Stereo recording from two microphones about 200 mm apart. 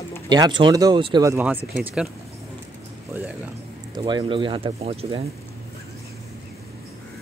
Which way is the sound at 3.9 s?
20° right (ahead or behind).